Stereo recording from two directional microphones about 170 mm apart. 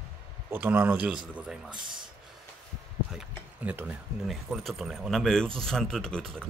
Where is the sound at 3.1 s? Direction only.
10° right (ahead or behind).